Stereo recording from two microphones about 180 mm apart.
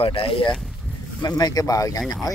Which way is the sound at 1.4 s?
20° left (ahead or behind).